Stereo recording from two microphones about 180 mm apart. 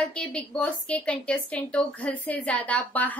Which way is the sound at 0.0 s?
5° left (ahead or behind).